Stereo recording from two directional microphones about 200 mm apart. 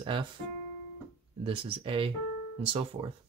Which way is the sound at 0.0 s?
25° right (ahead or behind).